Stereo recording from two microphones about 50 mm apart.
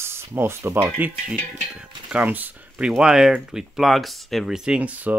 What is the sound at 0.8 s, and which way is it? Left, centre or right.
Speech, right.